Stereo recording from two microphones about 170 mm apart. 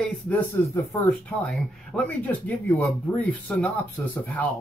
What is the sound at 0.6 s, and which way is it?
Speech, 20° left (ahead or behind).